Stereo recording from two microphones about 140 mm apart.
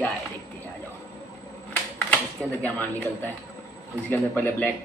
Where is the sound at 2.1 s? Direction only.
10° left (ahead or behind).